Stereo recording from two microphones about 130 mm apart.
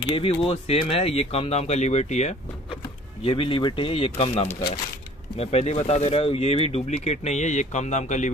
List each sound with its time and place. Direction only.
0.1 s speech: 45° left (ahead or behind)
3.3 s speech: 40° left (ahead or behind); by 8.3 s 65° left (ahead or behind)